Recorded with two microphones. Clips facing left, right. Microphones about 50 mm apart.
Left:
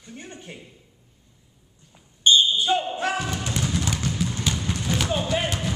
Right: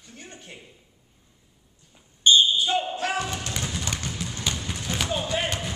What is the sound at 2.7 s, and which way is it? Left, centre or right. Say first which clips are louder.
Speech: left 2 dB; centre.